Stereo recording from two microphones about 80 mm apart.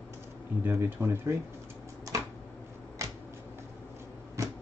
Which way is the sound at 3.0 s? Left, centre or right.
Right.